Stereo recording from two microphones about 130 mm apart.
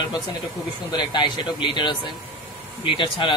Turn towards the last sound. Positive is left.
turn(degrees=40)  # may be behind; listen again after turning